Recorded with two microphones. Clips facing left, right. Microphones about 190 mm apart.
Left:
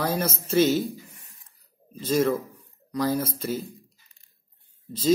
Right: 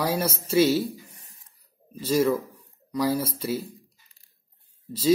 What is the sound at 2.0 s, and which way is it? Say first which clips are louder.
Speech: right 1 dB; 5° right (ahead or behind).